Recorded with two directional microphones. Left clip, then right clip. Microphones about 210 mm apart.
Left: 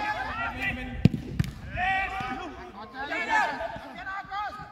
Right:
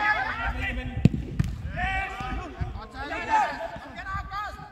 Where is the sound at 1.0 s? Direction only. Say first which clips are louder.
Right 1 dB; centre (ahead or behind).